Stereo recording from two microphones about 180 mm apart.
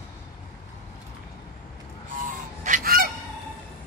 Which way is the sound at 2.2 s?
45° right (ahead or behind).